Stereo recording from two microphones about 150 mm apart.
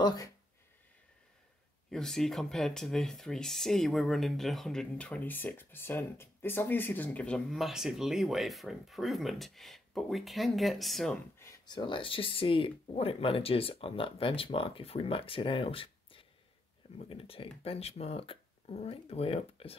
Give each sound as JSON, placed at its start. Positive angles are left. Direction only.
{"t": 0.0, "sound": "speech", "side_deg": 25}
{"t": 1.9, "sound": "speech", "side_deg": 5}
{"t": 11.6, "sound": "speech", "side_deg": 30}